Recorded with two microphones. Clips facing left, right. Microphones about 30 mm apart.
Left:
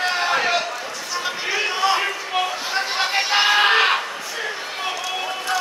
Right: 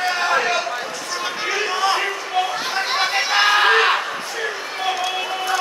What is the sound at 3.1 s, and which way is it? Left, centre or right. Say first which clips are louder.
Music: even; centre.